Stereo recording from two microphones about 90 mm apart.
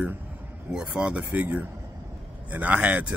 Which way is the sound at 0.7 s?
10° right (ahead or behind).